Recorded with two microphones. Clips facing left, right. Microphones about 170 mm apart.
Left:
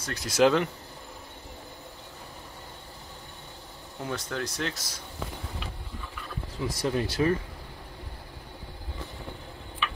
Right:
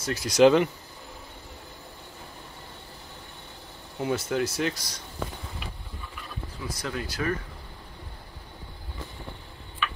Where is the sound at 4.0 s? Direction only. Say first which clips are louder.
Right 6 dB; 5° right (ahead or behind).